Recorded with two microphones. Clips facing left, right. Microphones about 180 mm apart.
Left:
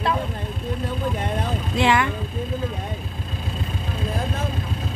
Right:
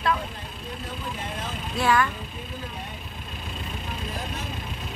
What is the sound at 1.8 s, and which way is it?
Speech, 25° left (ahead or behind).